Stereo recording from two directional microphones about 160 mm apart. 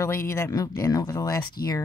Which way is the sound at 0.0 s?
15° left (ahead or behind).